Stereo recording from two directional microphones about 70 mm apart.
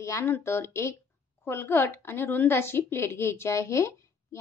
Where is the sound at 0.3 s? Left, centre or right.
Left.